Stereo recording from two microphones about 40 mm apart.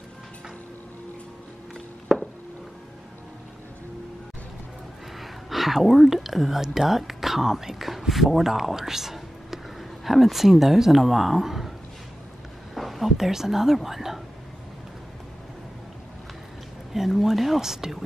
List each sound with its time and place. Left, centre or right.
2.1 s a sound: centre
5.2 s speech: centre
12.7 s speech: centre
16.9 s speech: centre